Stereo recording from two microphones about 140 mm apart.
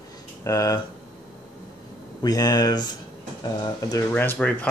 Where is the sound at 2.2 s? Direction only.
30° left (ahead or behind).